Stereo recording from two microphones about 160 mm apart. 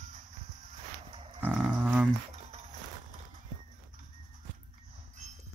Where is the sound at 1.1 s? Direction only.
35° right (ahead or behind).